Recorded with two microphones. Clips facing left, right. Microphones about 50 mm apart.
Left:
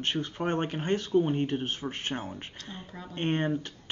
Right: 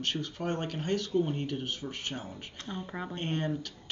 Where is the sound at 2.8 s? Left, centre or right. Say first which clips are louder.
Right 5 dB; right.